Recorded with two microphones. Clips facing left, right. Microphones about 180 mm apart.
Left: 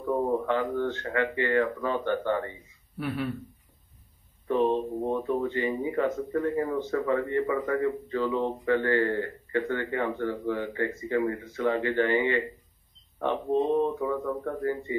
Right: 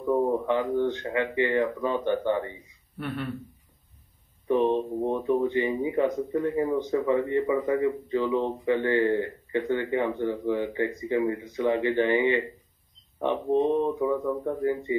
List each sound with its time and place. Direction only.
0.0 s speech: 15° right (ahead or behind)
3.0 s a man's voice: 5° left (ahead or behind)
4.5 s speech: 15° right (ahead or behind)